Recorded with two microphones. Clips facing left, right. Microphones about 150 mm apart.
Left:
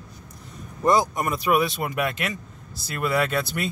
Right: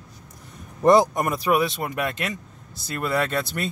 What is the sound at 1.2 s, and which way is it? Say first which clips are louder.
Speech: right 2 dB; 45° right (ahead or behind).